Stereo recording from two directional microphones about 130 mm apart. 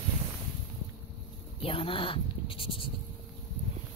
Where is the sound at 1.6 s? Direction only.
45° left (ahead or behind).